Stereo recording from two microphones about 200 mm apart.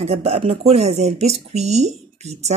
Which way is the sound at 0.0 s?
30° right (ahead or behind).